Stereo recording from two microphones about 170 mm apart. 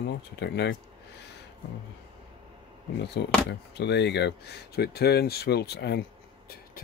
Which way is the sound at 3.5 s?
90° left.